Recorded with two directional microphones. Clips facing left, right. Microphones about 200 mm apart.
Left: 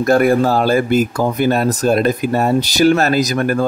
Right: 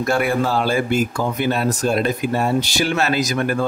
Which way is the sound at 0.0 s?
40° left (ahead or behind).